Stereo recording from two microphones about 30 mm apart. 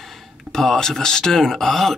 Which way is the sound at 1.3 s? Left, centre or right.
Centre.